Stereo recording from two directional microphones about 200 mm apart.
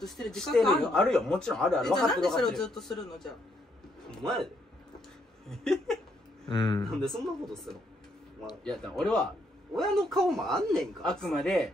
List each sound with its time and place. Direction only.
0.0 s a man's voice: centre (ahead or behind)
5.5 s speech: centre (ahead or behind)
6.5 s speech: 20° left (ahead or behind)
6.8 s speech: centre (ahead or behind)